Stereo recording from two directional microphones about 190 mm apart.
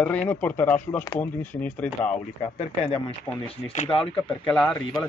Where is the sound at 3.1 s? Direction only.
30° left (ahead or behind).